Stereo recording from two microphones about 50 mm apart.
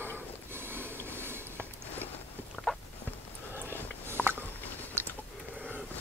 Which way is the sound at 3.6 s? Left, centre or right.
Right.